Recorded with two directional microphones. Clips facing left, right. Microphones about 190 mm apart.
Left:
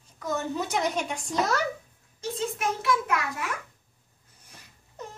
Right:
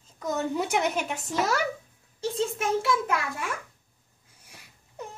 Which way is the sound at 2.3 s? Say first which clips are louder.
Right 3 dB; 30° right (ahead or behind).